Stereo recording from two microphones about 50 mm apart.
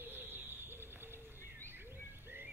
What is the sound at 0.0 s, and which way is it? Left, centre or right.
Bird, right.